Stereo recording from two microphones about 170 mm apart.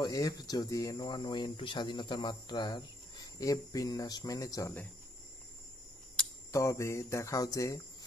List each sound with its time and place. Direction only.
0.0 s speech: 20° left (ahead or behind)
6.5 s speech: 20° left (ahead or behind)